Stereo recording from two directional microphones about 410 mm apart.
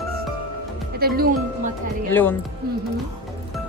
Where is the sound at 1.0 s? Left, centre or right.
Right.